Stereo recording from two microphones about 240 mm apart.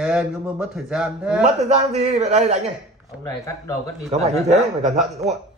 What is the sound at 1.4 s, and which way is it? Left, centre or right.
A man's voice, right.